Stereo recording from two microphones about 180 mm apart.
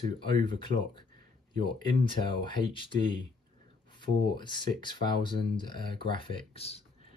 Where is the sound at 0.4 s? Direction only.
25° left (ahead or behind).